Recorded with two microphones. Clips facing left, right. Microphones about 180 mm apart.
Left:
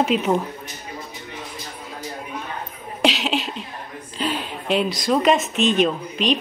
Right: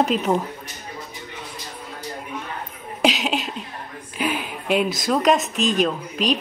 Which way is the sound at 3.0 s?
5° right (ahead or behind).